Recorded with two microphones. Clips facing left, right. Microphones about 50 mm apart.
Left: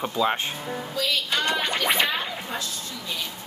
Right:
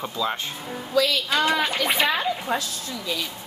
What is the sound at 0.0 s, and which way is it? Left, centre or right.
Speech, left.